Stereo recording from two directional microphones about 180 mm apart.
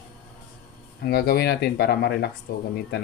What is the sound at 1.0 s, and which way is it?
Speech, 60° left (ahead or behind).